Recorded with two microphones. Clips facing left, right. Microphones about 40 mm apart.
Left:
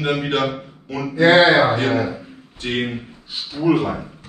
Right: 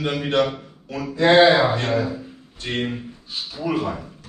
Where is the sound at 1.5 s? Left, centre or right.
Left.